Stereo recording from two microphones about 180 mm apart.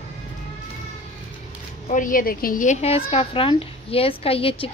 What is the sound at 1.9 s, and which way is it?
A woman's voice, 50° left (ahead or behind).